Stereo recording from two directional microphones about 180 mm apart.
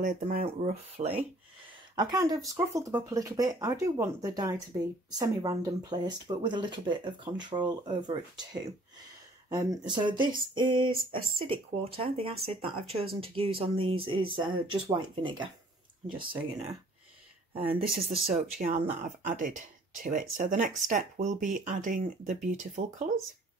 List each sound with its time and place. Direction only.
0.0 s speech: 50° right (ahead or behind)
0.5 s speech: 35° right (ahead or behind)
2.0 s speech: 20° right (ahead or behind)
17.6 s speech: 55° right (ahead or behind)